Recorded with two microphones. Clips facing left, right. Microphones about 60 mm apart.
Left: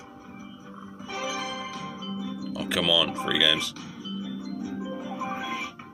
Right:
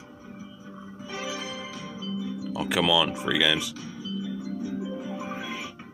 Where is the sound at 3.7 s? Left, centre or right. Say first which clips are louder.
Right 2 dB; centre.